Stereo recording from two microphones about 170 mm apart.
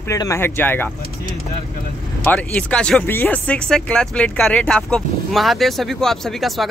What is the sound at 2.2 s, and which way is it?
Speech, 10° left (ahead or behind).